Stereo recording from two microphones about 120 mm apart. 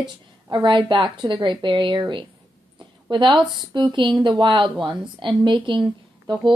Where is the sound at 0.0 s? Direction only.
40° right (ahead or behind).